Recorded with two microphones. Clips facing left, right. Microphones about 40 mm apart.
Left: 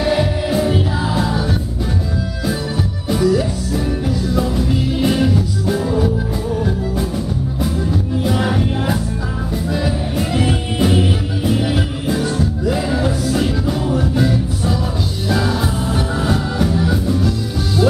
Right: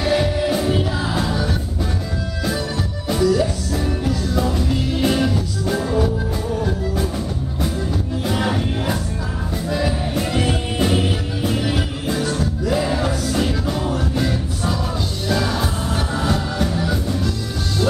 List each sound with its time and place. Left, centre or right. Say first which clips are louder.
0.0 s music: left 1 dB; centre
3.1 s music: left 1 dB; centre
8.2 s music: left 3 dB; centre